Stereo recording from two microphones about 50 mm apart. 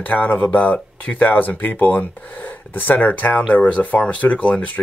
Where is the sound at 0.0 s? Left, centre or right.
Left.